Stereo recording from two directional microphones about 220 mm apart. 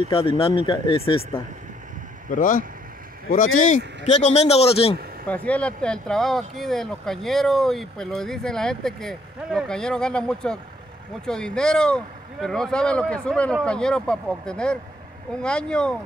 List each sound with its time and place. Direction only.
0.1 s speech: 25° left (ahead or behind)
2.3 s speech: 35° left (ahead or behind)
5.2 s speech: 5° left (ahead or behind)